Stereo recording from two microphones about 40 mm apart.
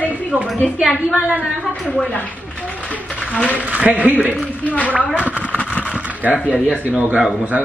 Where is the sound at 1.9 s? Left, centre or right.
Left.